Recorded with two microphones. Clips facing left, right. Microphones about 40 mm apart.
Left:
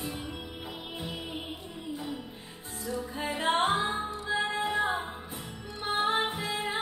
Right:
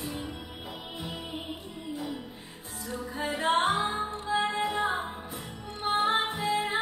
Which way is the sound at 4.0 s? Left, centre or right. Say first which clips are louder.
Right 2 dB; right.